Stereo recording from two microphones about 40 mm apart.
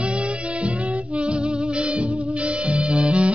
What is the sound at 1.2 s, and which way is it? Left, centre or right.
Music, right.